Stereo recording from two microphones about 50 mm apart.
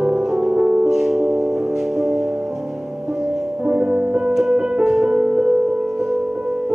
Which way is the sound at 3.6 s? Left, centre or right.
Right.